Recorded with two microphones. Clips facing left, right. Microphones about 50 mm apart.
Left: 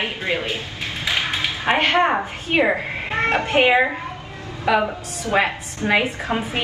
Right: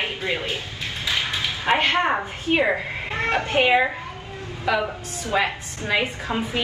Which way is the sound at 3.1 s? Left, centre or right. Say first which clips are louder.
Left 3 dB; left.